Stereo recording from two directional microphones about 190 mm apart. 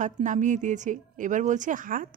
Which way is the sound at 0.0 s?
40° right (ahead or behind).